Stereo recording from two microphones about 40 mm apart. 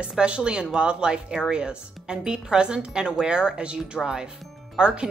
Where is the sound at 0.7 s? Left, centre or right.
Right.